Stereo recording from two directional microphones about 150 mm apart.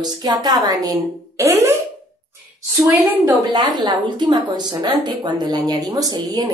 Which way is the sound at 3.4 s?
25° right (ahead or behind).